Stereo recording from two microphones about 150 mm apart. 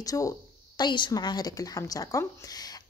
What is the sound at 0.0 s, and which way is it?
A woman's voice, 25° left (ahead or behind).